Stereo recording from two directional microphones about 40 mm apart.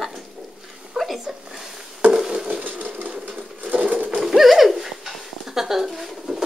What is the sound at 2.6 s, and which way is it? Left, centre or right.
Sewing machine, right.